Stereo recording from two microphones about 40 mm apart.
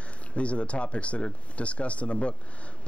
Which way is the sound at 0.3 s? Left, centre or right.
Left.